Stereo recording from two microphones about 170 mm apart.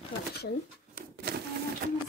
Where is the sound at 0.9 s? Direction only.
70° right (ahead or behind).